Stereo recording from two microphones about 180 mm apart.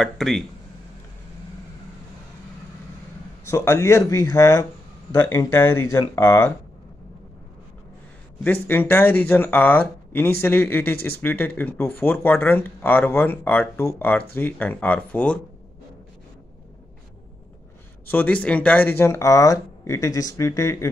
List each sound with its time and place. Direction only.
0.0 s speech: centre (ahead or behind)
3.4 s speech: 15° left (ahead or behind)
8.6 s speech: 10° left (ahead or behind)
18.0 s speech: 10° left (ahead or behind)